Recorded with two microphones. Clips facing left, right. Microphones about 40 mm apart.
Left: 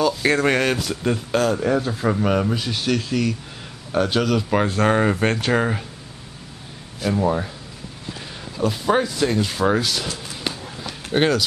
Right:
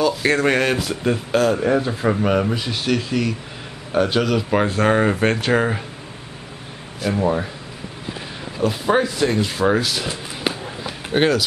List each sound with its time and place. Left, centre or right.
0.0 s speech: centre
7.0 s speech: centre
10.0 s a sound: centre
11.1 s speech: centre